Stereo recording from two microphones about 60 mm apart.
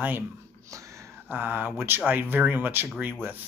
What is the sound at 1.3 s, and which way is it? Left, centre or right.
Speech, right.